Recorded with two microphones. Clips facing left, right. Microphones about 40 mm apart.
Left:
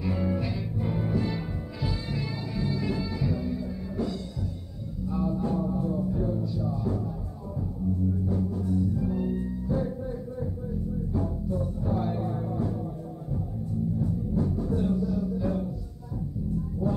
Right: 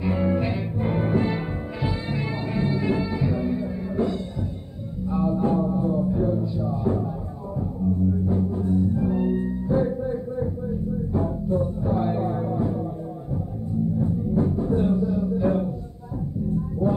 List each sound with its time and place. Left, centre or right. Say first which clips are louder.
0.0 s music: right 6 dB; right
8.1 s music: right 5 dB; right
11.8 s music: right 5 dB; right
13.9 s music: right 6 dB; right
16.8 s music: right 6 dB; right